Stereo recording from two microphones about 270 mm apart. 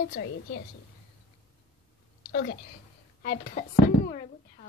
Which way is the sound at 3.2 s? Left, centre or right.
Left.